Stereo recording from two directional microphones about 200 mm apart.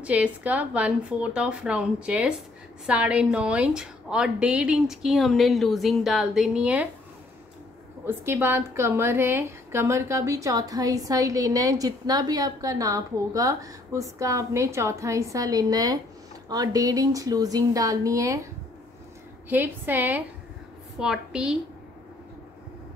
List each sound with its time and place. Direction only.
0.0 s a woman's voice: 5° right (ahead or behind)
8.1 s a woman's voice: 10° right (ahead or behind)
19.5 s a woman's voice: 10° right (ahead or behind)